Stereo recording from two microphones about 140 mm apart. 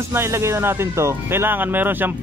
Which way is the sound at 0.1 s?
20° right (ahead or behind).